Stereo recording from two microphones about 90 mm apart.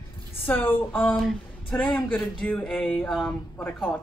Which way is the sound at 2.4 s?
10° left (ahead or behind).